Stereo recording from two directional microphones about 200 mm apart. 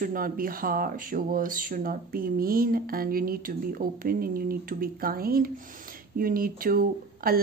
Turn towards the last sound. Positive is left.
turn(degrees=-45)  # may be behind; listen again after turning